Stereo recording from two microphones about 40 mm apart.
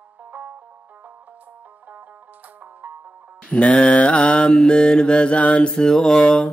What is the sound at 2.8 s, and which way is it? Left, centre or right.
Music, right.